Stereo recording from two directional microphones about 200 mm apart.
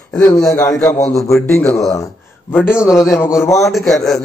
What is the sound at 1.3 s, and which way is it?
Speech, 5° left (ahead or behind).